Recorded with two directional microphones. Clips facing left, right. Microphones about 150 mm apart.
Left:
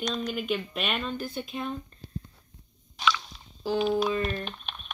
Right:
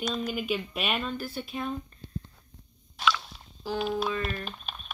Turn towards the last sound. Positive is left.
turn(degrees=-5)  # may be behind; listen again after turning